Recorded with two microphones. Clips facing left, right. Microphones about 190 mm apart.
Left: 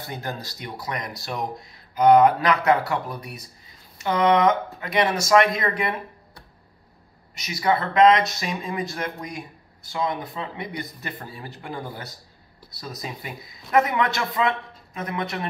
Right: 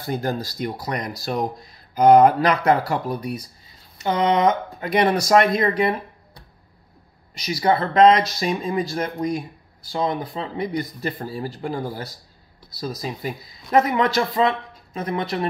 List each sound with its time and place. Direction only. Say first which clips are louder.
0.0 s speech: right 7 dB; 35° right (ahead or behind)
4.7 s speech: right 4 dB; 40° right (ahead or behind)
7.3 s speech: right 3 dB; 35° right (ahead or behind)